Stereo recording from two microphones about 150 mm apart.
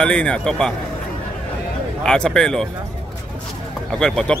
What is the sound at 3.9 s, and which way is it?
Speech, 5° left (ahead or behind).